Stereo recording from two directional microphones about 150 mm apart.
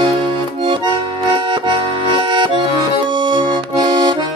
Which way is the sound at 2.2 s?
30° right (ahead or behind).